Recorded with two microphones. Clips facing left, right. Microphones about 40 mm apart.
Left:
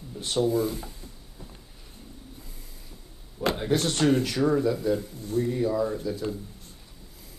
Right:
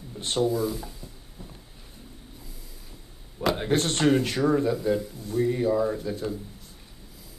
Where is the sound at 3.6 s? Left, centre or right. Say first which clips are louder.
Even; right.